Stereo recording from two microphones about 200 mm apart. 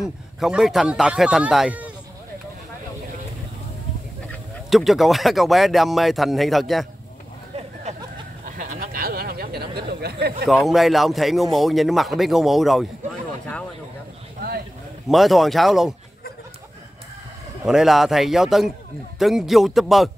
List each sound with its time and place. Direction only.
0.0 s speech: centre (ahead or behind)
4.3 s speech: centre (ahead or behind)
8.5 s a sound: 45° right (ahead or behind)
10.4 s speech: centre (ahead or behind)
15.0 s speech: centre (ahead or behind)
17.6 s speech: centre (ahead or behind)